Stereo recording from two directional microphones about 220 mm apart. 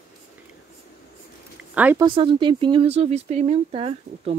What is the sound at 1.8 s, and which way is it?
Speech, 10° right (ahead or behind).